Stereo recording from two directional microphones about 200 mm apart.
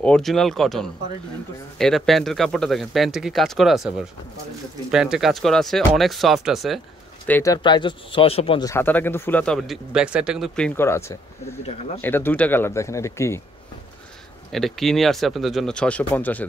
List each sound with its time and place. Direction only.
0.0 s speech: 5° left (ahead or behind)
7.2 s speech: 15° left (ahead or behind); by 8.6 s 30° left (ahead or behind)
8.6 s speech: 10° left (ahead or behind)
11.6 s speech: 30° left (ahead or behind)
12.0 s speech: 10° left (ahead or behind)
14.5 s speech: centre (ahead or behind)